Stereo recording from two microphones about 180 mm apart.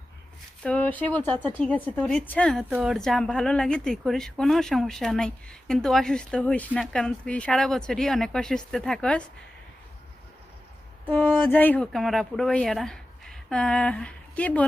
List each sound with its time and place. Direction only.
0.6 s speech: 5° left (ahead or behind)
1.3 s speech: 25° right (ahead or behind)
1.6 s a woman's voice: 5° left (ahead or behind)
11.1 s a woman's voice: 10° left (ahead or behind)